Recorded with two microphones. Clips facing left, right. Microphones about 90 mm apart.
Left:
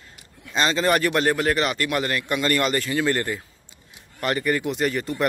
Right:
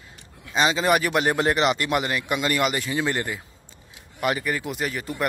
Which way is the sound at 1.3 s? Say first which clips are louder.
Right 1 dB; 25° right (ahead or behind).